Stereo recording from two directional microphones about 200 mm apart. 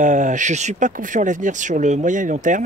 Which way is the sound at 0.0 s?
40° right (ahead or behind).